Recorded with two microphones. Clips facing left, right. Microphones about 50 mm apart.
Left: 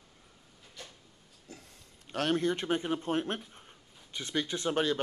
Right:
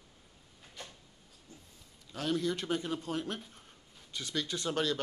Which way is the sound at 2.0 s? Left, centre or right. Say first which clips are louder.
Left 4 dB; left.